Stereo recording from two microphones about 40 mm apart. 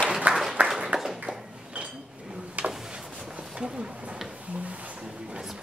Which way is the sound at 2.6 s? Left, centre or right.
Right.